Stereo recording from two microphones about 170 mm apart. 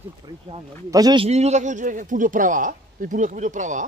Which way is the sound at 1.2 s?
40° right (ahead or behind).